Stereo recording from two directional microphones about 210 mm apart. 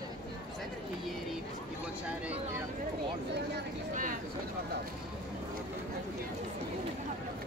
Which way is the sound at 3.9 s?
40° right (ahead or behind).